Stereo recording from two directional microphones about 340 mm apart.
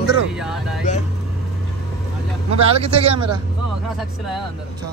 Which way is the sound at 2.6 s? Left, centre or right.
Centre.